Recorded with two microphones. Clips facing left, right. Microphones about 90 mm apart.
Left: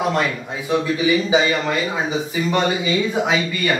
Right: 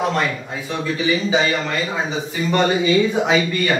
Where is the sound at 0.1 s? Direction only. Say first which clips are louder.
Even; 15° left (ahead or behind).